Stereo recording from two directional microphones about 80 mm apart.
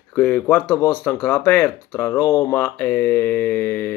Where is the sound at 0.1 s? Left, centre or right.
Centre.